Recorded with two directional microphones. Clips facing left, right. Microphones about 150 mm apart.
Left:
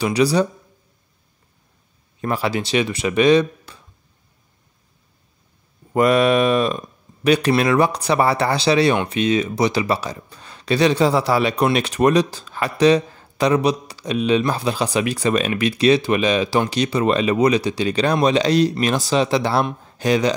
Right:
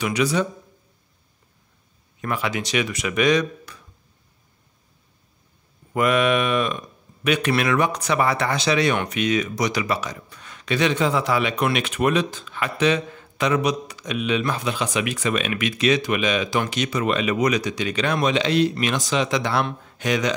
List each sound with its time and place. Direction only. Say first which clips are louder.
0.0 s speech: left 5 dB; 35° left (ahead or behind)
2.2 s speech: left 4 dB; 35° left (ahead or behind)
5.9 s speech: left 4 dB; 35° left (ahead or behind)